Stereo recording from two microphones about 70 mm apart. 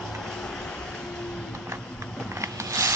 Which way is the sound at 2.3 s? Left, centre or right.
Right.